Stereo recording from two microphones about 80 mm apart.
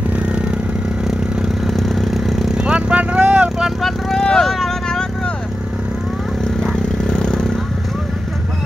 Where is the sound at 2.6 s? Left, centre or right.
Centre.